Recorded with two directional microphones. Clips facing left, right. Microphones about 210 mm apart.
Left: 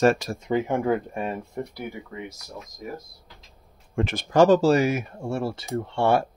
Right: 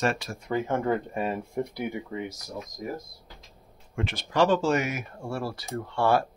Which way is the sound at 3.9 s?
45° left (ahead or behind).